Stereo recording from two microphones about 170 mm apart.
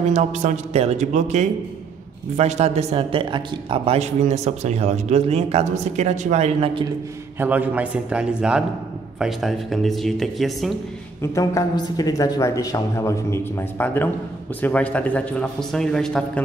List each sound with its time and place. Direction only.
0.1 s speech: 45° right (ahead or behind)
7.3 s a man's voice: 10° right (ahead or behind)
11.3 s a man's voice: 20° left (ahead or behind); by 16.4 s 5° left (ahead or behind)